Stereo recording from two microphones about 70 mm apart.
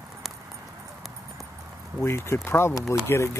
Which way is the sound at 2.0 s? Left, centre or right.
Left.